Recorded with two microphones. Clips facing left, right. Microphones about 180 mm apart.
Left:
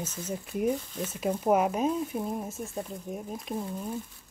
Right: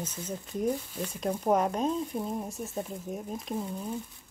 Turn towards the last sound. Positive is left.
turn(degrees=0)  # may be behind; listen again after turning